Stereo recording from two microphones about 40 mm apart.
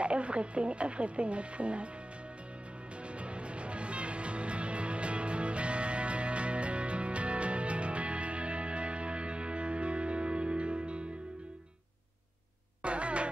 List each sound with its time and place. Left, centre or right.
0.0 s speech: right
3.2 s music: right
12.8 s music: right